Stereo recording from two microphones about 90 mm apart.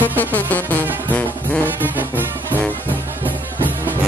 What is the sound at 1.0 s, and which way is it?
Music, 15° left (ahead or behind).